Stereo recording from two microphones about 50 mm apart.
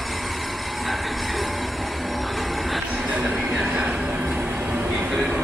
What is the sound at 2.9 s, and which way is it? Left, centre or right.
Train, centre.